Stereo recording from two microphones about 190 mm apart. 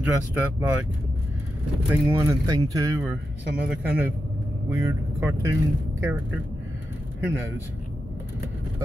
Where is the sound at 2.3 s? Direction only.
20° right (ahead or behind).